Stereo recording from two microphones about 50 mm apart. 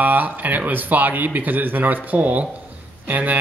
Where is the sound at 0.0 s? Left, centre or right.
Right.